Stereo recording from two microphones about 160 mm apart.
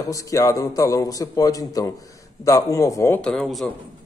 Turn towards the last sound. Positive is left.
turn(degrees=0)  # may be behind; listen again after turning